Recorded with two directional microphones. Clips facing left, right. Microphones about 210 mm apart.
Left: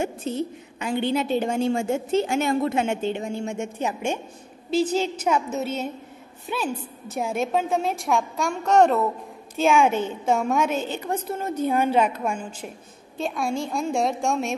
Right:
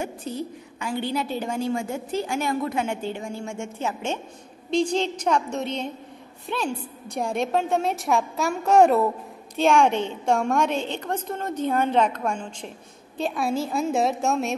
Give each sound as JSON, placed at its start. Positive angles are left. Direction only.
{"t": 0.0, "sound": "a woman's voice", "side_deg": 25}
{"t": 9.6, "sound": "a woman's voice", "side_deg": 5}